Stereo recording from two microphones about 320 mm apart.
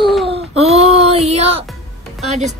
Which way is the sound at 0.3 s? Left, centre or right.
Centre.